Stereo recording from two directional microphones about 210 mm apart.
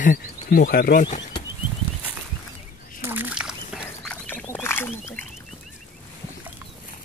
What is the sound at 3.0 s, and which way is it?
Duck, 10° right (ahead or behind).